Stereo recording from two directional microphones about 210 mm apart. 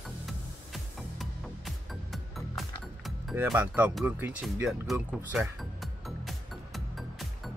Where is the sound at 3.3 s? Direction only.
10° right (ahead or behind).